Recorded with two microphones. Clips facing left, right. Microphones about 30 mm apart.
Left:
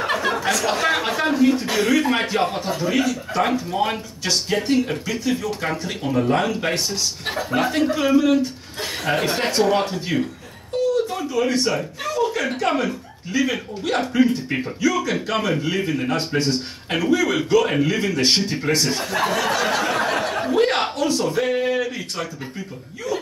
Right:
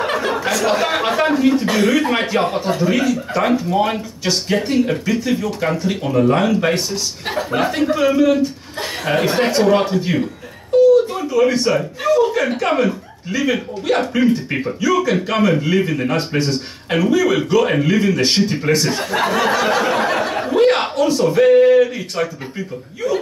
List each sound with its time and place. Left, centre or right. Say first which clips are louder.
0.0 s chuckle: right 2 dB; centre
2.8 s speech: right 2 dB; centre
6.0 s speech: right 4 dB; centre
11.1 s a man's voice: right 5 dB; centre
18.9 s speech: right 3 dB; centre
19.1 s a sound: right 4 dB; right; by 22.2 s centre